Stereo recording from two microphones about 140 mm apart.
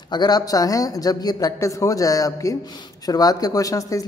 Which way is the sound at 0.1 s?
30° left (ahead or behind).